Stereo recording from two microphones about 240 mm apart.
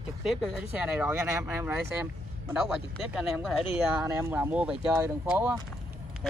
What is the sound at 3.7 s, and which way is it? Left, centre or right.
Speech, centre.